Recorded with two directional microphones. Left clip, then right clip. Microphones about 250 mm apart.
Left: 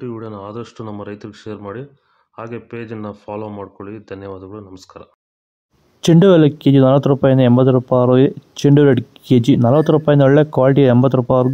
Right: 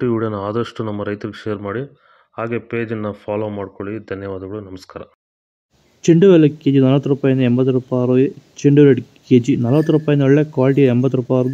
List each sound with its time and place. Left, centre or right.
0.0 s speech: right
5.9 s speech: left